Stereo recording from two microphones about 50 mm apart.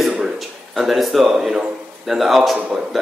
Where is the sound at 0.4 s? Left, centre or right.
Centre.